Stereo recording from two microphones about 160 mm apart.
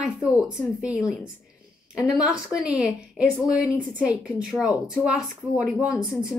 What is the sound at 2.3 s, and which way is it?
Speech, 5° right (ahead or behind).